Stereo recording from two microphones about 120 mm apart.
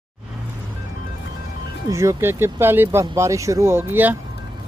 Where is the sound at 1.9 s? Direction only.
25° right (ahead or behind).